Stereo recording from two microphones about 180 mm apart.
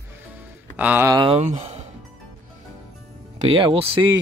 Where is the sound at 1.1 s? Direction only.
30° right (ahead or behind).